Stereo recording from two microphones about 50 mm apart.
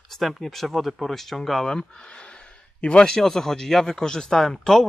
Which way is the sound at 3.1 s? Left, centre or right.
Centre.